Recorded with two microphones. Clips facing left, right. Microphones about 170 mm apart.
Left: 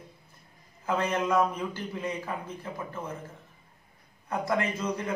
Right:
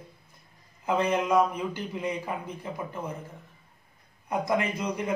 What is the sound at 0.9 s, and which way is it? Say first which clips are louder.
A man's voice: right 2 dB; 15° right (ahead or behind).